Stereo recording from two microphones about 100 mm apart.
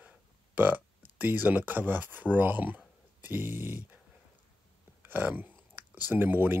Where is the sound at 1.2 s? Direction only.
20° right (ahead or behind).